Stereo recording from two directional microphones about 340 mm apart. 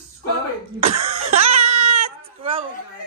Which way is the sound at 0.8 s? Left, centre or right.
Centre.